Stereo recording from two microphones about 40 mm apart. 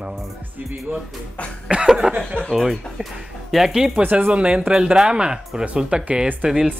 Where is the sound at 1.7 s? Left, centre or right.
Right.